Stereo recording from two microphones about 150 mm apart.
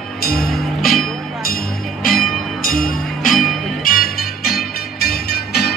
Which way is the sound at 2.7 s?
65° left (ahead or behind).